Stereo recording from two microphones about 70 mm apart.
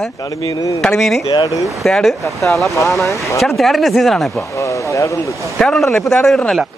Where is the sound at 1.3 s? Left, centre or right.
Left.